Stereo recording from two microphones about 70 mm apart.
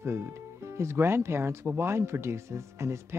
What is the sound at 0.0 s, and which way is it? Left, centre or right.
Speech, right.